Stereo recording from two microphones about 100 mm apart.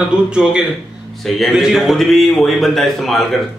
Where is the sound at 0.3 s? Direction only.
10° right (ahead or behind).